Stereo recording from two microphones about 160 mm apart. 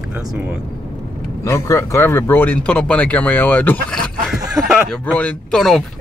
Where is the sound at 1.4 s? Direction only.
20° left (ahead or behind).